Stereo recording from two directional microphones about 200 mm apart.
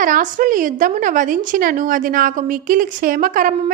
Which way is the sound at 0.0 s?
40° right (ahead or behind).